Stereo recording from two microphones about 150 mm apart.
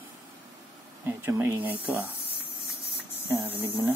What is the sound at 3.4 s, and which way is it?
Speech, 10° right (ahead or behind).